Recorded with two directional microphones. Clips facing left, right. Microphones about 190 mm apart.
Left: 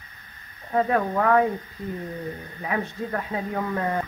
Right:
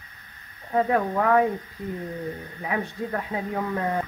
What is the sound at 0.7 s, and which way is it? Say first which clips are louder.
Speech: even; 15° right (ahead or behind).